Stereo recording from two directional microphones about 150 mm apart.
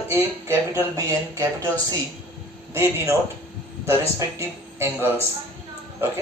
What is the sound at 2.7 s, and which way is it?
Speech, 15° right (ahead or behind).